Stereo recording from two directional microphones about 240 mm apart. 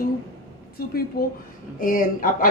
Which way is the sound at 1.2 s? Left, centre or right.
Left.